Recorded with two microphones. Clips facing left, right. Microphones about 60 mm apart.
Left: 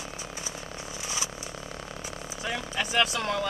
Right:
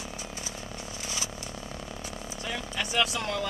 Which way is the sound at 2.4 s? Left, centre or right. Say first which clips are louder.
Left 3 dB; left.